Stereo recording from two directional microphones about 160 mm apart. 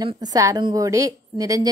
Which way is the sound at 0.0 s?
20° right (ahead or behind).